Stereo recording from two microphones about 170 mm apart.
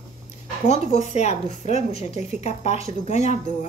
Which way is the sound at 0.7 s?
45° left (ahead or behind).